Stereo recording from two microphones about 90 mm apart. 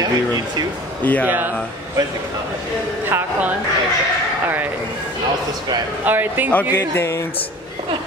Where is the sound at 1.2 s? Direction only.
20° right (ahead or behind).